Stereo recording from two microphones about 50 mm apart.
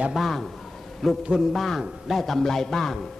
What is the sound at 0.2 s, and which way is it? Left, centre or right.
Speech, centre.